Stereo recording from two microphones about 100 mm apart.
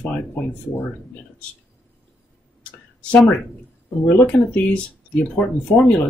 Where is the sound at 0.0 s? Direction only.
15° left (ahead or behind).